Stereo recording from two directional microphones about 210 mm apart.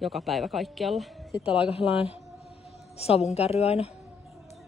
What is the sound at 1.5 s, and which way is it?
Speech, 25° left (ahead or behind).